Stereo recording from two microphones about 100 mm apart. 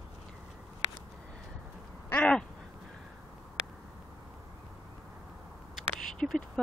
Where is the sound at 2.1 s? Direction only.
10° left (ahead or behind).